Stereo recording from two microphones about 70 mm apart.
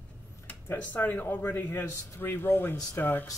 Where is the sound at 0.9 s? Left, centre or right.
Left.